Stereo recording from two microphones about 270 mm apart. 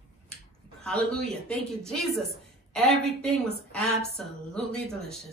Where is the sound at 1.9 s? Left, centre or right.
Centre.